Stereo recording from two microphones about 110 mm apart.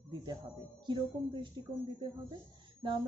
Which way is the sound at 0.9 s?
45° right (ahead or behind).